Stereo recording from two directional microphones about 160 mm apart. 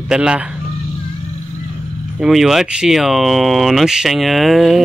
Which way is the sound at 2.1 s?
Centre (ahead or behind).